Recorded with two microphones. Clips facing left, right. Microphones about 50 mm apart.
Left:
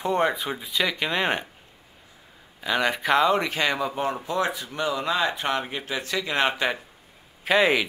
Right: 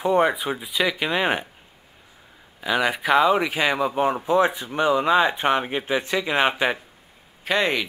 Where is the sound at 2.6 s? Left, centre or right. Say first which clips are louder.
Right 2 dB; centre.